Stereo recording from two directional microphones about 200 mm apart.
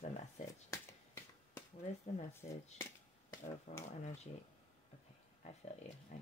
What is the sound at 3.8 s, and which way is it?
Speech, 35° left (ahead or behind).